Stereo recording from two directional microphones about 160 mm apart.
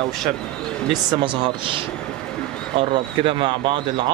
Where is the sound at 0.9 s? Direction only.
30° right (ahead or behind).